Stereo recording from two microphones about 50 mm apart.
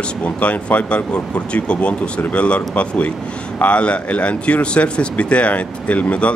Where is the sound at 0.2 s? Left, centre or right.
Left.